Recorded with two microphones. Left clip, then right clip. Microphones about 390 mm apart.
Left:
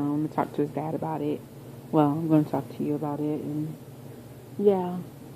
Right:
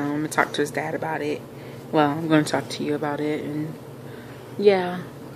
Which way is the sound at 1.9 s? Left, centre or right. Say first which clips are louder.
Right 3 dB; centre.